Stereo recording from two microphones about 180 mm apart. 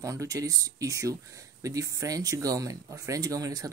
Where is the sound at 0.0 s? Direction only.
20° right (ahead or behind).